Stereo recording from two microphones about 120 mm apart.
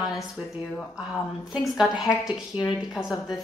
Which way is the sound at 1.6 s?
5° right (ahead or behind).